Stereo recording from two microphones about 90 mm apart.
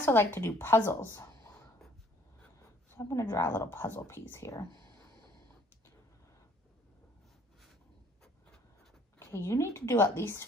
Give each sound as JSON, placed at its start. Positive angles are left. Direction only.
{"t": 0.0, "sound": "a woman's voice", "side_deg": 25}
{"t": 3.0, "sound": "speech", "side_deg": 35}
{"t": 9.2, "sound": "a woman's voice", "side_deg": 30}